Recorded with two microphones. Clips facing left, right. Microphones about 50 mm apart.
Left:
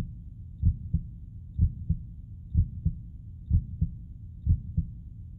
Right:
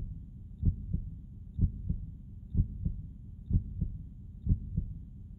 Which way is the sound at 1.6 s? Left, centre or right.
Centre.